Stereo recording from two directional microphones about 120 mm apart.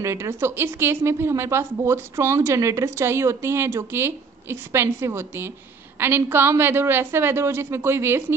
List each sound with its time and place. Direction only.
0.0 s a woman's voice: 20° right (ahead or behind)